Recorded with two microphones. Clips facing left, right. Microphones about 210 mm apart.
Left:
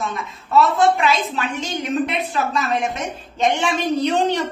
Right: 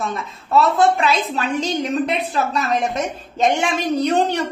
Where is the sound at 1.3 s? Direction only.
35° right (ahead or behind).